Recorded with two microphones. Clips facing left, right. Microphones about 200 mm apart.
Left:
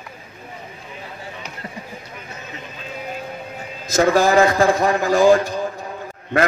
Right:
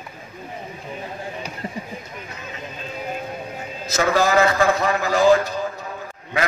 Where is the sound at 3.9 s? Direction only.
50° left (ahead or behind).